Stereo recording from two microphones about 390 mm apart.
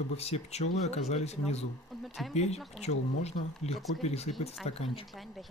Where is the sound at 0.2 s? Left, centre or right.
Centre.